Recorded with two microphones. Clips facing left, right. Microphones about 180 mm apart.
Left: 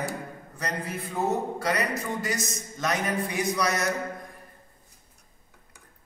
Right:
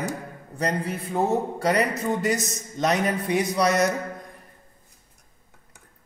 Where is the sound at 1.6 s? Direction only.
30° right (ahead or behind).